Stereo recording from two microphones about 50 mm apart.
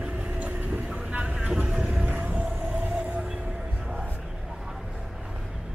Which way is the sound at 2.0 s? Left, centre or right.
Right.